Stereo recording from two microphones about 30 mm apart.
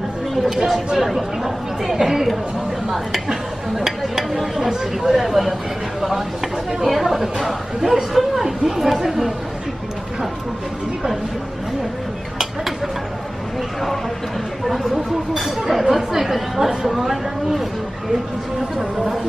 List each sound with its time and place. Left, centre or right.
0.3 s speech: centre
2.0 s a man's voice: centre
6.8 s a man's voice: centre
14.7 s a man's voice: centre